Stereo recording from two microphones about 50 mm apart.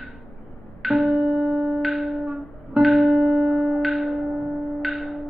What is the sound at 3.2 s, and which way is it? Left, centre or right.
Music, right.